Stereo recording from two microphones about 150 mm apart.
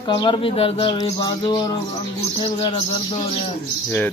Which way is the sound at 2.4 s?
40° left (ahead or behind).